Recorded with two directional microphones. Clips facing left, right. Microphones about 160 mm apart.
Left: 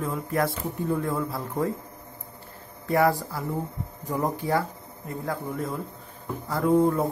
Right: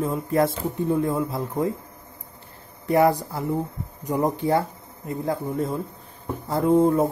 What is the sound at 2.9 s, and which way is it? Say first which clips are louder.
Speech: right 3 dB; 20° right (ahead or behind).